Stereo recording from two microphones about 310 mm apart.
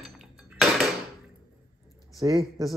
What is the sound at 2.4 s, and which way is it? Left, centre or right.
Speech, centre.